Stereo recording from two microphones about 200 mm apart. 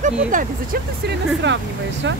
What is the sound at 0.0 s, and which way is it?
Speech, 40° right (ahead or behind).